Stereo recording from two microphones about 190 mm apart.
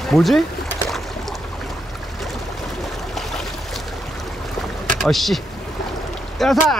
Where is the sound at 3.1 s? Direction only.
Centre (ahead or behind).